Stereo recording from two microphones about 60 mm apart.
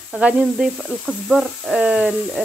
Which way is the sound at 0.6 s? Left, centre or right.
Centre.